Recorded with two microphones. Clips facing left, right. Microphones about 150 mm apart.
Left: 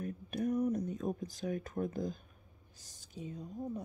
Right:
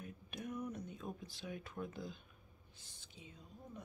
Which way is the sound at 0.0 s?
40° left (ahead or behind).